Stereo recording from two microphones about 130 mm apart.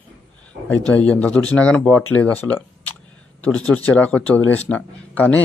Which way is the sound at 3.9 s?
10° left (ahead or behind).